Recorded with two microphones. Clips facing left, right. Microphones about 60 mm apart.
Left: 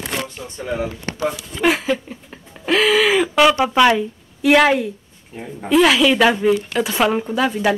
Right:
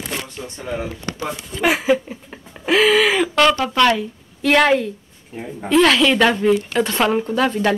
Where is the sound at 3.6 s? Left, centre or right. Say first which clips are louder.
Left 2 dB; centre.